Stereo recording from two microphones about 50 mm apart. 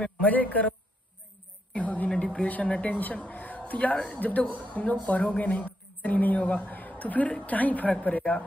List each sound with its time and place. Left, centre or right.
0.0 s a woman's voice: left